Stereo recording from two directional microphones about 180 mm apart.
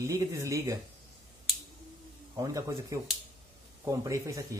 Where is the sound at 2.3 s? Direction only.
15° right (ahead or behind).